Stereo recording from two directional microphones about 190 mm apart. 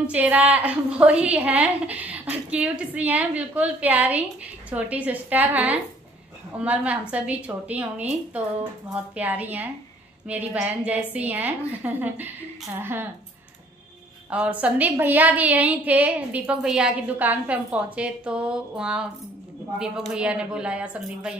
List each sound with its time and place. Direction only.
0.0 s a woman's voice: 5° right (ahead or behind)
9.1 s a woman's voice: 10° right (ahead or behind)
14.3 s a woman's voice: 5° right (ahead or behind)